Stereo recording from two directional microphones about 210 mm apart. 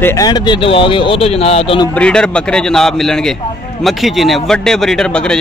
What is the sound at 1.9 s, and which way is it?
Speech, 5° left (ahead or behind).